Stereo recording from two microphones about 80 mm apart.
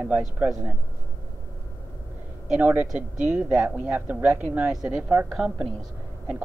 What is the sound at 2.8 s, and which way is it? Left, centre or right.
A man's voice, centre.